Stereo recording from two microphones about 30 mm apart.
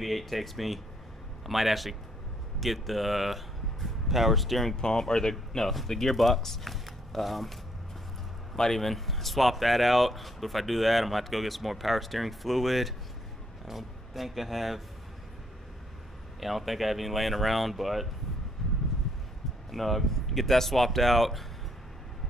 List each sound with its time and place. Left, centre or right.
0.0 s speech: centre
4.7 s speech: centre
5.6 s speech: centre
8.5 s speech: centre
16.3 s speech: centre
18.6 s a sound: centre
19.7 s speech: centre